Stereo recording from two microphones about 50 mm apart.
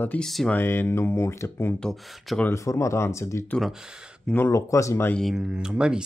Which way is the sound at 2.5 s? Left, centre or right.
Left.